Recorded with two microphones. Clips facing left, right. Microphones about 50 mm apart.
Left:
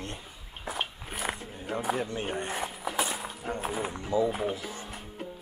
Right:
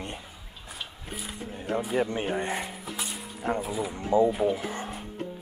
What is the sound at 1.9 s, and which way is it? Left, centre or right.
Speech, right.